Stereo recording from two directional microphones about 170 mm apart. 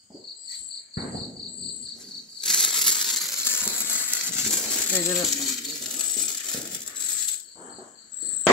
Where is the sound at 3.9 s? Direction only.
10° right (ahead or behind).